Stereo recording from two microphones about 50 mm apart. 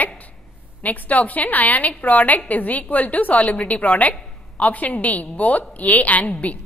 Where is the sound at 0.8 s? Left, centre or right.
Left.